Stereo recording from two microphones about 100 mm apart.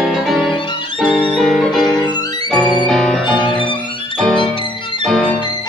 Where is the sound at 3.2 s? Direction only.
50° left (ahead or behind).